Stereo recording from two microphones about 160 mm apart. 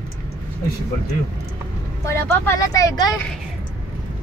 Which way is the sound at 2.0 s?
15° left (ahead or behind).